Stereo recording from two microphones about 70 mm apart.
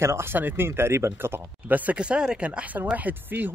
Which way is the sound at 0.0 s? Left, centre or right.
Right.